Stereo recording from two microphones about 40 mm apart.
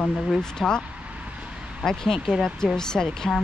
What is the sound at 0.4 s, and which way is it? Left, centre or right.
Speech, centre.